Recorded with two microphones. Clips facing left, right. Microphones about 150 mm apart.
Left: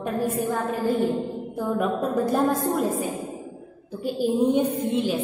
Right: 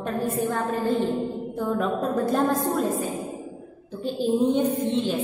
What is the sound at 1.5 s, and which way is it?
A woman's voice, 10° left (ahead or behind).